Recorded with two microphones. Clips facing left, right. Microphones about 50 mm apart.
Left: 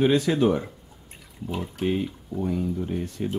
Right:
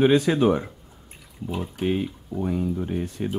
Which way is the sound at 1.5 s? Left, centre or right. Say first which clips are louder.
Right 1 dB; centre.